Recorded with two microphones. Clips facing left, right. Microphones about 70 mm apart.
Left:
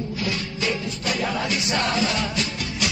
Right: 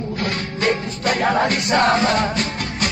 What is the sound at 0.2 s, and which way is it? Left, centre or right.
Music, right.